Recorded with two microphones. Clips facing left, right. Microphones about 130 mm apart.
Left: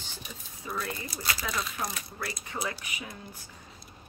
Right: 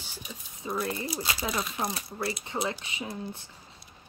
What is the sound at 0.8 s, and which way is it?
Speech, 25° right (ahead or behind).